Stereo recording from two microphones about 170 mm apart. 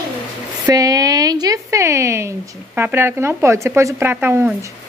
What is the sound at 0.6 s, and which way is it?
Speech, 20° right (ahead or behind).